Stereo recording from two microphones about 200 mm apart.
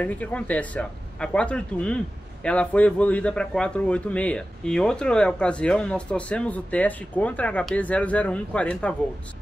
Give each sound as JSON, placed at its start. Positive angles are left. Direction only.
{"t": 0.0, "sound": "a man's voice", "side_deg": 5}